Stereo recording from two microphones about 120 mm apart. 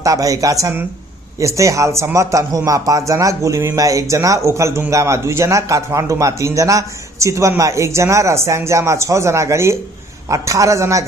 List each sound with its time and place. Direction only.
0.0 s a man's voice: 30° right (ahead or behind)